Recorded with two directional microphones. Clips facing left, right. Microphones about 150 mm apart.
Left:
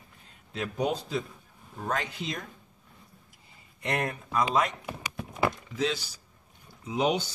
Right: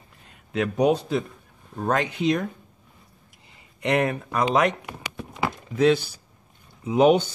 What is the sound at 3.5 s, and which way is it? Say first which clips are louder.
A man's voice: right 8 dB; 75° right (ahead or behind).